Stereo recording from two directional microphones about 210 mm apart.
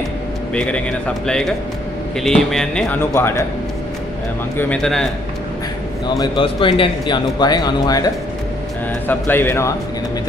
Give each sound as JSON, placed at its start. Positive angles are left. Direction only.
{"t": 0.6, "sound": "speech", "side_deg": 5}
{"t": 4.6, "sound": "speech", "side_deg": 5}
{"t": 6.0, "sound": "a man's voice", "side_deg": 20}